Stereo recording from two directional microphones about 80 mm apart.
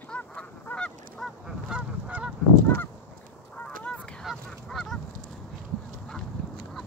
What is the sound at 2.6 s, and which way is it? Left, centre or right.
Goose, left.